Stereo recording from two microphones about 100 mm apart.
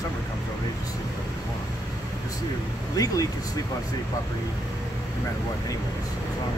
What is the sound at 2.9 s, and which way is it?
Speech, 35° left (ahead or behind).